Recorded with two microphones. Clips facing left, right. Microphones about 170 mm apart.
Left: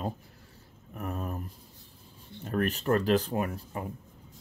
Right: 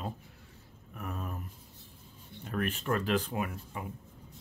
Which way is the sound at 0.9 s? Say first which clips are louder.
Left 4 dB; 40° left (ahead or behind).